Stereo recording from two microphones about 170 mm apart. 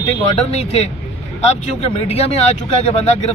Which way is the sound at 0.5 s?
40° left (ahead or behind).